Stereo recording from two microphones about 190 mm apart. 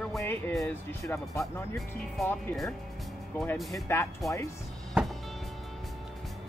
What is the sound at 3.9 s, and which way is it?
Speech, 10° left (ahead or behind).